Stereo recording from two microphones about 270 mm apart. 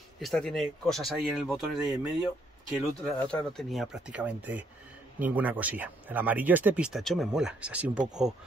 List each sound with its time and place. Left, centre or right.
0.2 s speech: centre